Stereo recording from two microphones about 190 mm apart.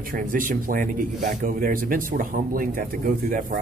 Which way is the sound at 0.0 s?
45° right (ahead or behind).